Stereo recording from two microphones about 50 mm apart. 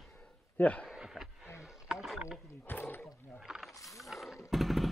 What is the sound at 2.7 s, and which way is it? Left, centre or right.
Speech, left.